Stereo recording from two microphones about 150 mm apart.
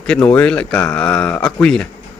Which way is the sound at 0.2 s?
10° left (ahead or behind).